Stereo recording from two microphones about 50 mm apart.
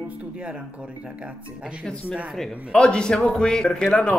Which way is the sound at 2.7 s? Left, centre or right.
Centre.